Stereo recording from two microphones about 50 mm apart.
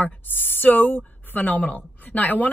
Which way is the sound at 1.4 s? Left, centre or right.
Left.